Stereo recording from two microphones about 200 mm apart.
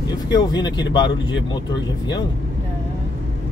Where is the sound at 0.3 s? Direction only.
20° left (ahead or behind).